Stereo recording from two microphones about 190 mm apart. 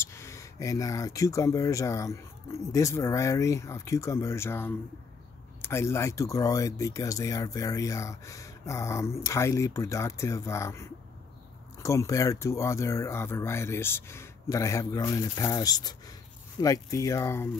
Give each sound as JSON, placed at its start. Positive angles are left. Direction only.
{"t": 0.0, "sound": "speech", "side_deg": 15}